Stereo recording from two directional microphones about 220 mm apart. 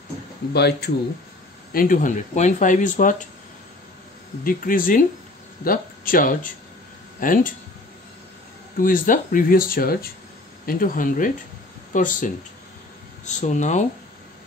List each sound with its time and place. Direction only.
0.5 s speech: 45° left (ahead or behind)
4.5 s speech: 40° left (ahead or behind)
8.7 s speech: 40° left (ahead or behind)